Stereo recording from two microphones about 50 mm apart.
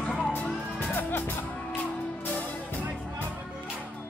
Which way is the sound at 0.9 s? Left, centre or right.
Left.